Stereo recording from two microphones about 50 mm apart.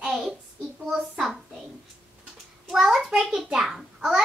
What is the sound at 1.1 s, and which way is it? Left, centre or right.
Speech, centre.